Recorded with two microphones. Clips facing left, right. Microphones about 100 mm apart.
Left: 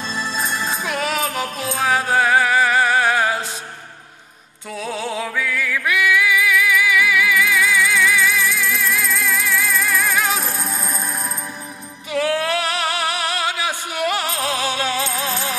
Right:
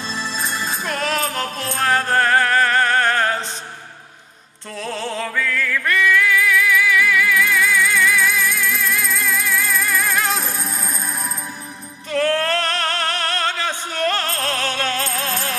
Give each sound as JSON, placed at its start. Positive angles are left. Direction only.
{"t": 0.1, "sound": "music", "side_deg": 45}
{"t": 0.8, "sound": "music", "side_deg": 5}
{"t": 4.7, "sound": "music", "side_deg": 5}
{"t": 12.1, "sound": "music", "side_deg": 10}